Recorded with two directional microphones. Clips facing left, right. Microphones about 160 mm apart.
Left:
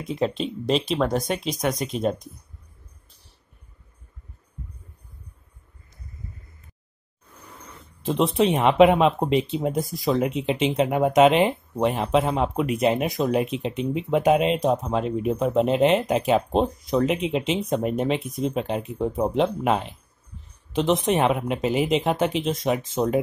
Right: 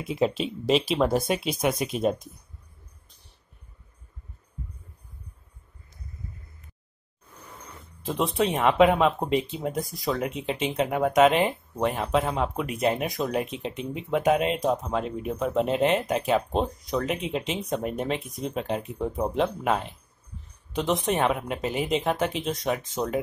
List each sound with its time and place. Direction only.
0.0 s speech: 5° right (ahead or behind)
8.5 s speech: 25° left (ahead or behind)
20.7 s speech: 25° left (ahead or behind)